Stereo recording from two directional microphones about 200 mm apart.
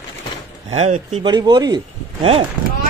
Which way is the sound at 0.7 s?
30° right (ahead or behind).